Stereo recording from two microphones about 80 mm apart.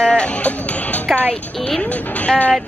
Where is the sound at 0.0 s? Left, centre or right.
Centre.